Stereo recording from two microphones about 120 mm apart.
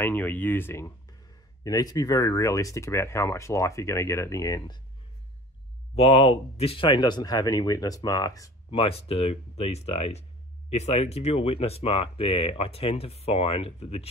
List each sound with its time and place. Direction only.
0.0 s speech: 15° left (ahead or behind)
1.6 s speech: 30° left (ahead or behind)
5.9 s speech: 55° left (ahead or behind); by 8.5 s 30° left (ahead or behind)
8.6 s speech: 50° left (ahead or behind)